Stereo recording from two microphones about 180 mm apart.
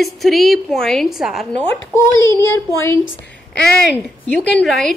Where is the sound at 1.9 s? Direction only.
15° left (ahead or behind).